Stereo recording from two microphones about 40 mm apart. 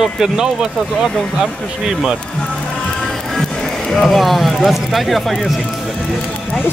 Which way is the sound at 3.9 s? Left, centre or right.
Centre.